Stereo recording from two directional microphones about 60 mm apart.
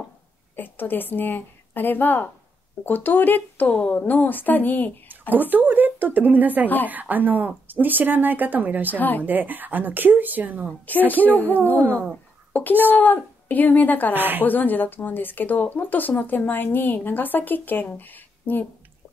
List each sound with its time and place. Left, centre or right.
0.6 s a woman's voice: left
5.5 s a woman's voice: right
8.9 s a woman's voice: left
9.2 s speech: right
11.2 s a woman's voice: left
11.8 s speech: right
12.8 s a woman's voice: left
14.1 s speech: right
14.4 s speech: left